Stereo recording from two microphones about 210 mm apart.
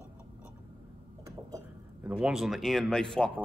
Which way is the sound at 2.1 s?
5° right (ahead or behind).